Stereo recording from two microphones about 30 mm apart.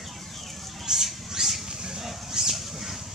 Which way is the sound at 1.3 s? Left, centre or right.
Centre.